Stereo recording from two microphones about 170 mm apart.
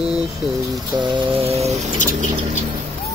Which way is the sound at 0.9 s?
30° right (ahead or behind).